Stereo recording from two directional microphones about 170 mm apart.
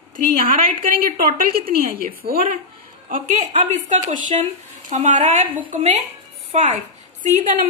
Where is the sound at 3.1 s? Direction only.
45° right (ahead or behind).